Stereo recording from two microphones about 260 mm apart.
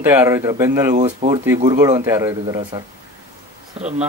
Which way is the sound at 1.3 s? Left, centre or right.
Centre.